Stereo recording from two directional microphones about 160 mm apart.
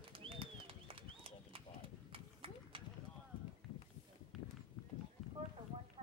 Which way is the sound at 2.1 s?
35° right (ahead or behind).